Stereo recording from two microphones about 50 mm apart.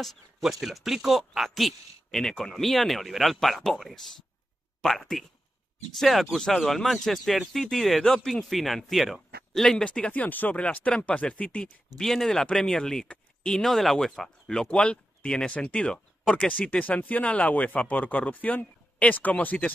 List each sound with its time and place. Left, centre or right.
0.0 s speech: centre
4.8 s speech: centre
9.8 s speech: left
10.1 s speech: left
11.6 s speech: centre
13.7 s speech: centre
14.7 s speech: centre